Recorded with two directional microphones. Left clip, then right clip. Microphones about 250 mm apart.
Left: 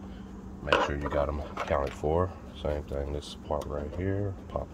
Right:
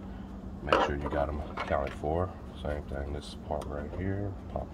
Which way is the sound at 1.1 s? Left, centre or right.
Left.